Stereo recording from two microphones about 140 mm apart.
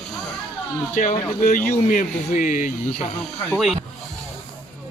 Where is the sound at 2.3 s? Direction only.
65° left (ahead or behind).